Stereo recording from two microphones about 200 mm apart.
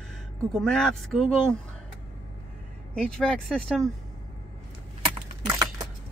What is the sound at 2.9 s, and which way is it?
Speech, 5° left (ahead or behind).